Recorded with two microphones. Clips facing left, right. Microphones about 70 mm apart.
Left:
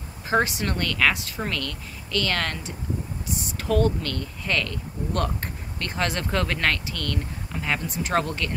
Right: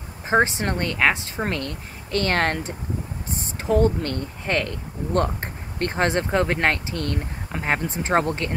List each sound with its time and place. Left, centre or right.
0.3 s speech: right